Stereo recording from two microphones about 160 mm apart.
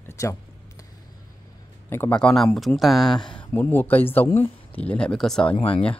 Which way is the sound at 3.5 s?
15° left (ahead or behind).